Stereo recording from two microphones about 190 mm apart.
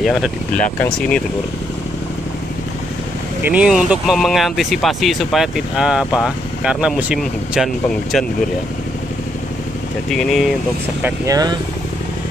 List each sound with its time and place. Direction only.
0.0 s speech: centre (ahead or behind)
3.4 s speech: 5° right (ahead or behind)
10.0 s speech: centre (ahead or behind)
11.0 s speech: 15° right (ahead or behind)